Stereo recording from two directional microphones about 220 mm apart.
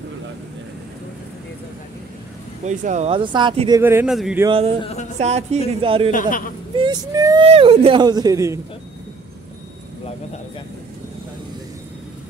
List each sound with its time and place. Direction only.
2.6 s speech: 35° right (ahead or behind); by 4.4 s 5° right (ahead or behind)
4.5 s speech: 25° right (ahead or behind)
4.8 s a sound: 30° left (ahead or behind)
5.2 s speech: 30° right (ahead or behind)